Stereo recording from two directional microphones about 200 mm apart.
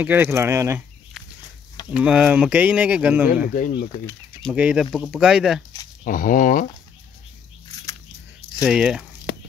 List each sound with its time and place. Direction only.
0.0 s speech: 10° right (ahead or behind)
1.9 s speech: 5° right (ahead or behind)
3.4 s speech: 45° left (ahead or behind)
4.1 s speech: 5° left (ahead or behind)
6.0 s speech: 45° left (ahead or behind)
8.6 s speech: 5° right (ahead or behind)
9.3 s a sound: 55° left (ahead or behind)